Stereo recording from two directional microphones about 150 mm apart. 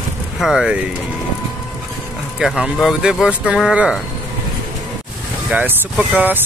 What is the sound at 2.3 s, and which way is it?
Speech, 5° right (ahead or behind).